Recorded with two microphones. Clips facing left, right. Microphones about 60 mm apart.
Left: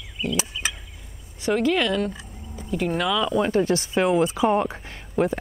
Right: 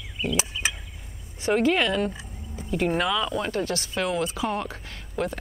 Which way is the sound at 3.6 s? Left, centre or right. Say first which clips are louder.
Left 6 dB; left.